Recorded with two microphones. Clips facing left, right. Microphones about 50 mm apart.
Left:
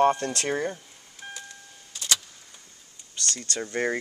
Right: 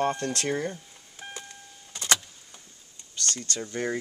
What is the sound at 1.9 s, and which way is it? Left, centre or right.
Vehicle, right.